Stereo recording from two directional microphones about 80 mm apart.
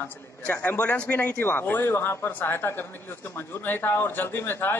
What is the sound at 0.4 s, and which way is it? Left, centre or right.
A man's voice, centre.